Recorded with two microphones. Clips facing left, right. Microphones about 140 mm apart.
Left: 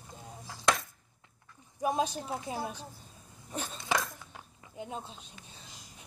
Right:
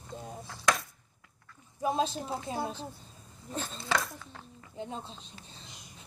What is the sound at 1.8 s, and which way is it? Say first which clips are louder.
Speech: right 1 dB; 15° left (ahead or behind).